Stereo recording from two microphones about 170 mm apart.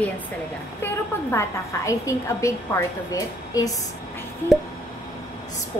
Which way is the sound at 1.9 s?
20° left (ahead or behind).